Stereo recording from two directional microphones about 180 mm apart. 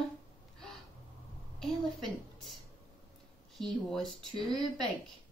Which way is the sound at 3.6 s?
Centre (ahead or behind).